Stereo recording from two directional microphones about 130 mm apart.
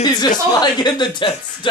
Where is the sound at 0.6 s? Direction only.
35° left (ahead or behind).